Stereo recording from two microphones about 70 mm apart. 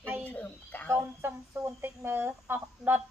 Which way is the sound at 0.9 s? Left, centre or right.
Right.